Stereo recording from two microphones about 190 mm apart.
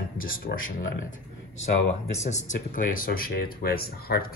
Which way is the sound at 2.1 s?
40° left (ahead or behind).